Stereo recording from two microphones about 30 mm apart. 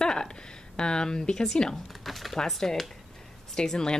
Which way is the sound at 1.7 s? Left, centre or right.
Centre.